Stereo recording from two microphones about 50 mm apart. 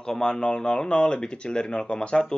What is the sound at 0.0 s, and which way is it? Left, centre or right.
Speech, centre.